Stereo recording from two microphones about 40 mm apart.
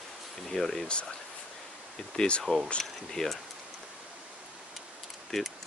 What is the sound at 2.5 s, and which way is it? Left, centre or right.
Speech, right.